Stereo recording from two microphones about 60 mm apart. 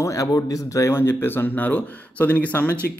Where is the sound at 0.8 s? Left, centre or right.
Left.